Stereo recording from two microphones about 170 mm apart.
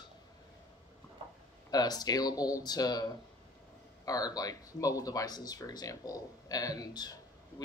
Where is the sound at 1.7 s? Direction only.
25° left (ahead or behind).